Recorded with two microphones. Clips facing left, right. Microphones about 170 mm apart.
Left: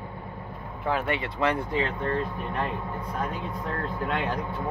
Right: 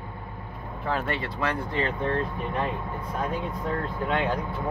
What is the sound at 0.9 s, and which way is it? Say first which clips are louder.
Speech: left 1 dB; 10° left (ahead or behind).